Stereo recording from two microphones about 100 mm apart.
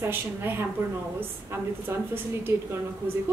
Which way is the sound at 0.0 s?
20° right (ahead or behind).